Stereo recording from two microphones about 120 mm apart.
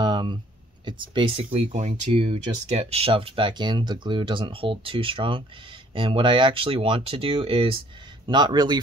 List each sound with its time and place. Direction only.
0.0 s a sound: 40° right (ahead or behind)
0.8 s speech: 40° right (ahead or behind); by 2.1 s 75° right (ahead or behind)
2.1 s speech: 50° right (ahead or behind)